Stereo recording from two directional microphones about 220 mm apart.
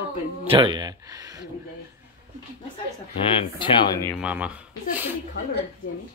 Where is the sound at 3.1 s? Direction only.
20° left (ahead or behind).